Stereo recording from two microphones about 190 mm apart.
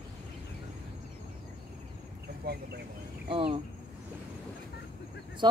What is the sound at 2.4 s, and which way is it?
Speech, 55° right (ahead or behind).